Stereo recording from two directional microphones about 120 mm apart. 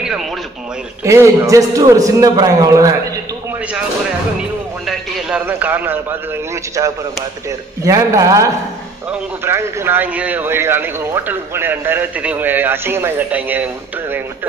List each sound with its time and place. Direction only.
1.0 s a man's voice: 25° right (ahead or behind)
4.8 s radio: 10° right (ahead or behind)
7.8 s a man's voice: 25° right (ahead or behind)